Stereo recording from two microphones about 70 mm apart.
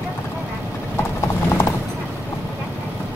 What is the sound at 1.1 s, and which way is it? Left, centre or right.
Clip-clop, left.